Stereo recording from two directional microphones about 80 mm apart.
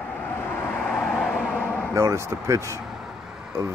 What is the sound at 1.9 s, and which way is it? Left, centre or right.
Speech, right.